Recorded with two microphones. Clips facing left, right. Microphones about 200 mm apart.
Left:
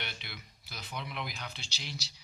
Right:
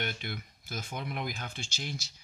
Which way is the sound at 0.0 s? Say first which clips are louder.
Right 8 dB; 50° right (ahead or behind).